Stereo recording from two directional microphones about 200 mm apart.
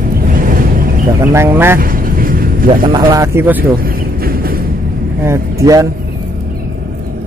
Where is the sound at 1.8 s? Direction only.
45° right (ahead or behind).